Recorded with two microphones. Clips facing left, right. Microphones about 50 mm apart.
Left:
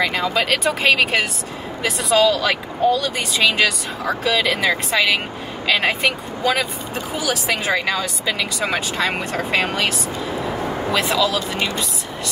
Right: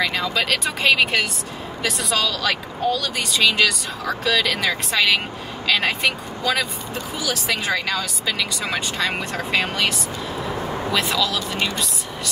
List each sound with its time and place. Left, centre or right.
0.0 s speech: centre
11.0 s speech: centre